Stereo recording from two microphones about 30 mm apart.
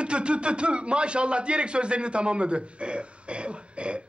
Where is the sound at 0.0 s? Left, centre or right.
Right.